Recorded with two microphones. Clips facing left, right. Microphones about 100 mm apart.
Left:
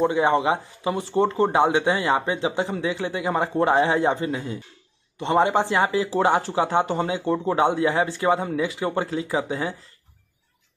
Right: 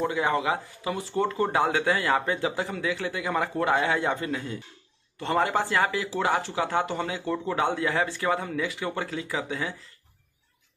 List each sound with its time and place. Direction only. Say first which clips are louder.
0.0 s speech: left 6 dB; 25° left (ahead or behind)